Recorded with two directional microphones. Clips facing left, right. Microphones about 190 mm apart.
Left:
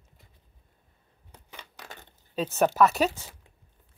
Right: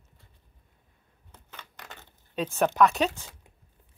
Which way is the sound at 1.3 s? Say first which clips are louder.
Left 1 dB; 15° left (ahead or behind).